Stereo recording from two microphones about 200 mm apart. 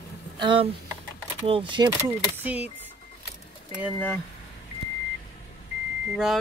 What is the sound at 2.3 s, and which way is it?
Speech, 5° right (ahead or behind).